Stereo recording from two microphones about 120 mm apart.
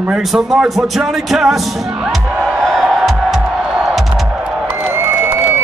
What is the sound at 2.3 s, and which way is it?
Music, 15° right (ahead or behind).